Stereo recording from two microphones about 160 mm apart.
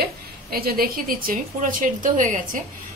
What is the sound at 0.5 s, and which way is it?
A woman's voice, 65° right (ahead or behind).